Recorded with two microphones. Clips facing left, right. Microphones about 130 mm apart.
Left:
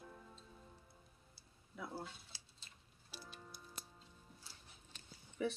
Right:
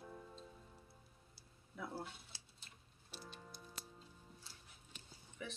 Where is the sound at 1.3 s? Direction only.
Centre (ahead or behind).